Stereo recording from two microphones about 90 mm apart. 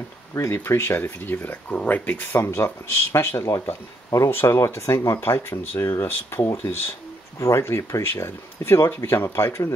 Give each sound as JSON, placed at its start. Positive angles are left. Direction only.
{"t": 0.3, "sound": "speech", "side_deg": 30}